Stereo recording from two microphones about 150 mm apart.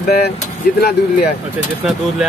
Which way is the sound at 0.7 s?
90° left.